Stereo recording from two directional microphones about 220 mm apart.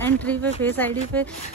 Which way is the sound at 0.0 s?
5° left (ahead or behind).